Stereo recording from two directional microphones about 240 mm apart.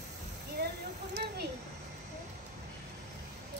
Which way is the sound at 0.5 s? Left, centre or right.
Right.